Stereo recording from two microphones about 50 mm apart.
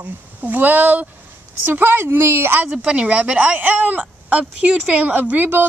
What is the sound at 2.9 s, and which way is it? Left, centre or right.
Speech, right.